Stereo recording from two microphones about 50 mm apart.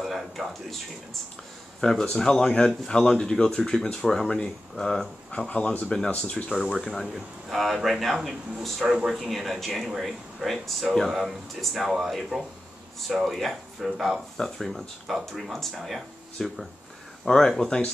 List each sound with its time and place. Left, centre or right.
0.0 s speech: centre
1.8 s speech: centre
5.5 s speech: left
6.3 s speech: centre